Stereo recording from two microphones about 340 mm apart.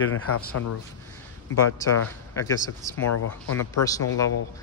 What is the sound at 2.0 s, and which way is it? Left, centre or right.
A man's voice, centre.